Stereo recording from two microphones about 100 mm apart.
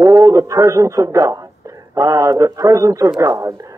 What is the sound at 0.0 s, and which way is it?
A man's voice, 35° right (ahead or behind).